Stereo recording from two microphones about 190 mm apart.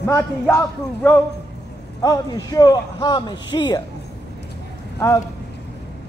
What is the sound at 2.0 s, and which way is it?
A man's voice, 20° left (ahead or behind).